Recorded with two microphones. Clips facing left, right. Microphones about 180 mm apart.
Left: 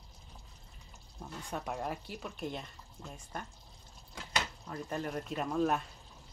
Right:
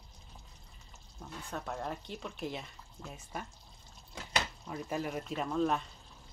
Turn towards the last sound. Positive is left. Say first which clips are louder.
# even
turn(degrees=5)  # may be behind; listen again after turning